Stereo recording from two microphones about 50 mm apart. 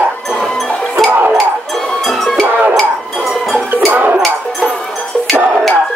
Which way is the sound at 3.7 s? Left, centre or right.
Right.